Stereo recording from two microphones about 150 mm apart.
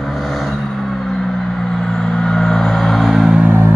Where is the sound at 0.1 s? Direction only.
Centre (ahead or behind).